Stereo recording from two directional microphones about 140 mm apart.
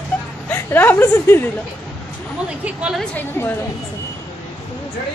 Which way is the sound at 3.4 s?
15° left (ahead or behind).